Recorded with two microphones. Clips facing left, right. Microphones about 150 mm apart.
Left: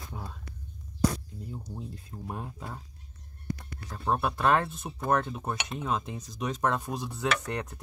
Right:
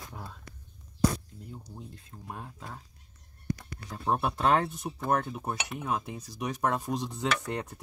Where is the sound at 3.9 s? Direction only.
20° right (ahead or behind).